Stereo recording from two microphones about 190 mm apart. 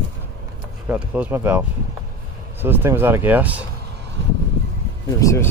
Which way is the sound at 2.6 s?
10° right (ahead or behind).